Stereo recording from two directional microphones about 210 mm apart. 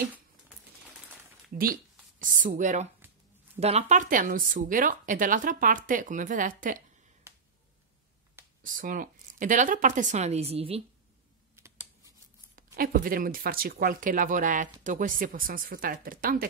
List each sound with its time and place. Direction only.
2.1 s speech: 40° right (ahead or behind)
7.3 s finger snapping: 10° right (ahead or behind)
8.6 s speech: 40° right (ahead or behind)
11.5 s computer keyboard: 10° right (ahead or behind)
12.7 s speech: 45° right (ahead or behind)